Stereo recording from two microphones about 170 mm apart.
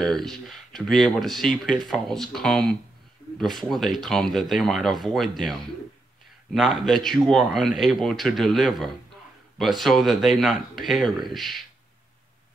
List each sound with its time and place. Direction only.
0.0 s speech: centre (ahead or behind)